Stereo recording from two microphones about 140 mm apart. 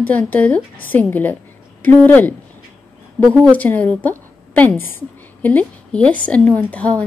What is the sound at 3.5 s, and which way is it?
A woman's voice, 10° left (ahead or behind).